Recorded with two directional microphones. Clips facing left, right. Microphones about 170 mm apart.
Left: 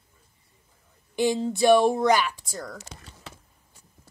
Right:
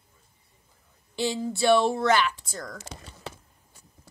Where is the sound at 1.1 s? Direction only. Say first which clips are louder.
Left 4 dB; 15° left (ahead or behind).